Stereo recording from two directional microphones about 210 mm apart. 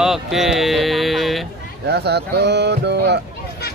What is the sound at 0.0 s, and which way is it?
Music, centre (ahead or behind).